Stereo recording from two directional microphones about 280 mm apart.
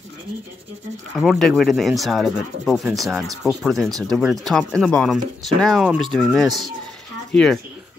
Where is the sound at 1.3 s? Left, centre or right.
Centre.